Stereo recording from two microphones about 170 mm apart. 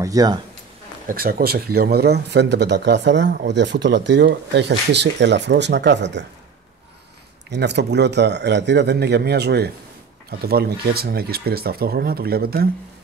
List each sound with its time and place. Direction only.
0.0 s speech: 20° right (ahead or behind)
1.0 s speech: 60° right (ahead or behind); by 6.2 s 90° right
7.5 s speech: 90° right; by 9.7 s 75° right (ahead or behind)
10.4 s speech: 65° right (ahead or behind)